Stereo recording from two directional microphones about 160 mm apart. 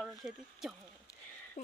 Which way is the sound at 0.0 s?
Centre (ahead or behind).